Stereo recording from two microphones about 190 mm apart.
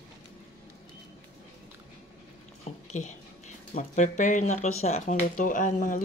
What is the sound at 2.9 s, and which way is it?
Speech, 40° left (ahead or behind).